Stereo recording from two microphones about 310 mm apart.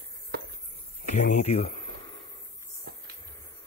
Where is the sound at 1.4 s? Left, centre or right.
Left.